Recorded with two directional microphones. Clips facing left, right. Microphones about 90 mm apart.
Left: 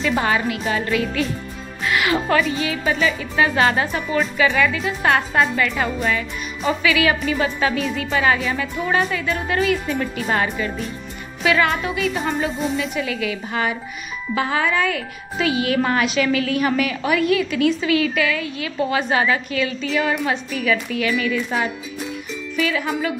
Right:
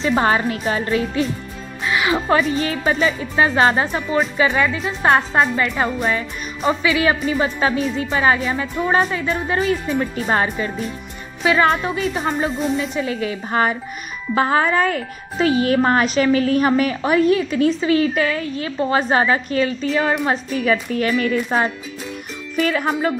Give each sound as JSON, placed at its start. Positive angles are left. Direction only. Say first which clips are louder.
{"t": 0.0, "sound": "speech", "louder": "right 3 dB", "side_deg": -35}
{"t": 1.9, "sound": "speech", "louder": "right 1 dB", "side_deg": -20}
{"t": 2.4, "sound": "speech", "louder": "right 2 dB", "side_deg": -40}